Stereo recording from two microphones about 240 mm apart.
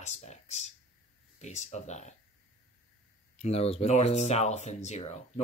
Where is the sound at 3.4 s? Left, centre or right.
Left.